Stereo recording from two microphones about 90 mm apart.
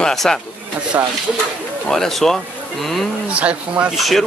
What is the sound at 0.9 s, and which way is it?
Speech, 30° right (ahead or behind).